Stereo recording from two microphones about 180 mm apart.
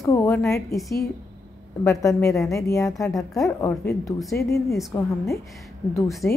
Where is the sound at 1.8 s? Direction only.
20° left (ahead or behind).